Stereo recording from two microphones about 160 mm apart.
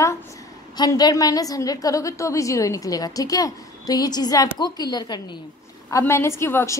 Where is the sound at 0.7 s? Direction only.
25° left (ahead or behind).